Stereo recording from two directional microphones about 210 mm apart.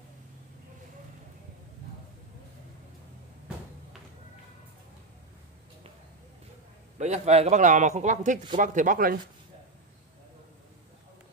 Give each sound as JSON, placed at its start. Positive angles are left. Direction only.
{"t": 7.0, "sound": "a man's voice", "side_deg": -30}